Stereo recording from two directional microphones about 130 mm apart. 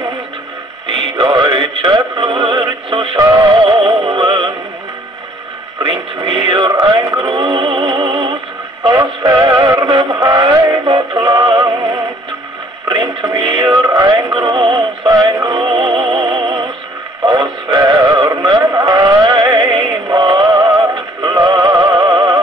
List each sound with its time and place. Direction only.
0.9 s music: 35° right (ahead or behind)
5.8 s radio: 40° right (ahead or behind)
7.0 s music: 25° right (ahead or behind)
7.2 s music: 40° right (ahead or behind)
8.8 s music: 25° right (ahead or behind)
10.2 s music: 25° right (ahead or behind)
11.1 s synthetic singing: 30° right (ahead or behind)
11.6 s synthetic singing: 25° right (ahead or behind)
16.2 s music: 35° right (ahead or behind)
17.2 s synthetic singing: 30° right (ahead or behind)
21.2 s music: 35° right (ahead or behind)